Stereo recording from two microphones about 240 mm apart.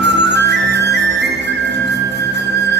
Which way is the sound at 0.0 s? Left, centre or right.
Right.